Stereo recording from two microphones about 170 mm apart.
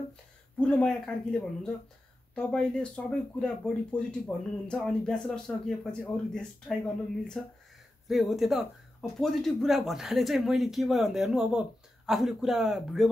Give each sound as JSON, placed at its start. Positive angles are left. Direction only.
{"t": 0.6, "sound": "speech", "side_deg": 5}